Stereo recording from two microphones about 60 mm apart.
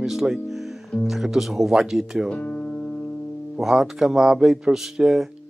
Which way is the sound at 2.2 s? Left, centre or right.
Left.